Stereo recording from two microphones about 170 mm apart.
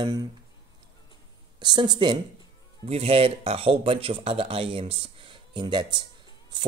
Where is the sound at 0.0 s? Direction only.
25° right (ahead or behind).